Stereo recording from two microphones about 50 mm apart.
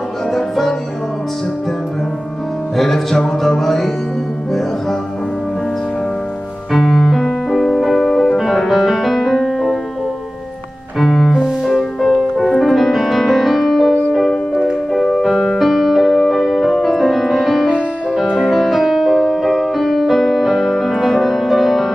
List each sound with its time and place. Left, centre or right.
0.3 s music: centre
2.7 s music: centre
6.7 s music: centre
11.0 s music: centre